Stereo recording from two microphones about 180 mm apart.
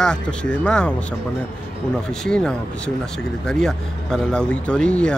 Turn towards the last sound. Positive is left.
turn(degrees=5)  # may be behind; listen again after turning